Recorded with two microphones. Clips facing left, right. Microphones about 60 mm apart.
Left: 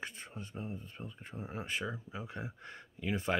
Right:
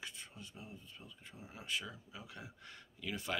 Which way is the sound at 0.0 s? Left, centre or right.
Left.